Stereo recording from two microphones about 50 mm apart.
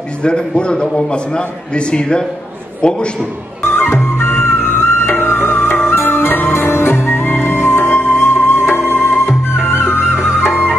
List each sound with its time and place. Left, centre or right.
0.2 s a man's voice: centre
3.6 s music: left
3.9 s music: left
6.0 s music: left
10.4 s music: centre